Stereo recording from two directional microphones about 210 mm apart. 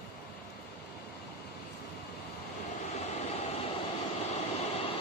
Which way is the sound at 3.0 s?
30° left (ahead or behind).